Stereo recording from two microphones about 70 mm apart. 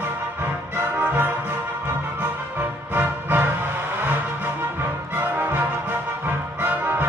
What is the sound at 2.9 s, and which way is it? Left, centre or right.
Music, right.